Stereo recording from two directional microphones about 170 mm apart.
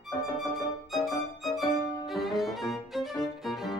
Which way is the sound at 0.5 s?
Centre (ahead or behind).